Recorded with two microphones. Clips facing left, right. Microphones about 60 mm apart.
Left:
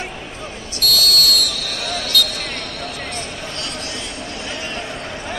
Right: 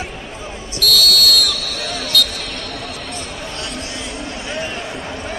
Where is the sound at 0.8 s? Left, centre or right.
Left.